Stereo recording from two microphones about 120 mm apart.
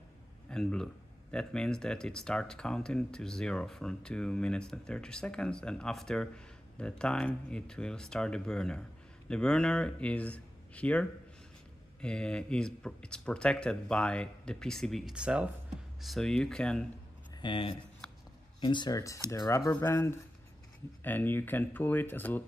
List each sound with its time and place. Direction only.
0.5 s speech: 5° left (ahead or behind)
17.4 s speech: 45° left (ahead or behind)
18.9 s speech: 25° left (ahead or behind)